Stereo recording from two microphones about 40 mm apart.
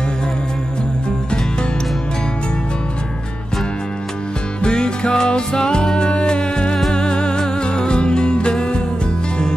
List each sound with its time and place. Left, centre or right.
4.6 s music: left